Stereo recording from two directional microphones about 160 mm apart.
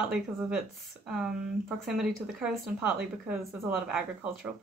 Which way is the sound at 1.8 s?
5° right (ahead or behind).